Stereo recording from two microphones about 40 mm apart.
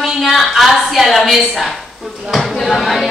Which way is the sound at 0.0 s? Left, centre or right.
Centre.